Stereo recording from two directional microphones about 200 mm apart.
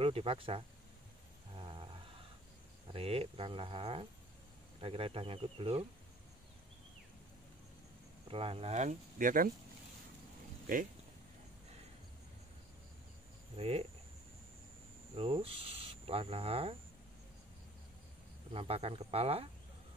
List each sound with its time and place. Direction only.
0.0 s speech: 30° right (ahead or behind)
1.5 s dog: 25° right (ahead or behind)
2.9 s speech: 30° right (ahead or behind)
8.3 s speech: 30° right (ahead or behind)
13.6 s speech: 30° right (ahead or behind)
15.1 s speech: 25° right (ahead or behind)
18.5 s speech: 30° right (ahead or behind)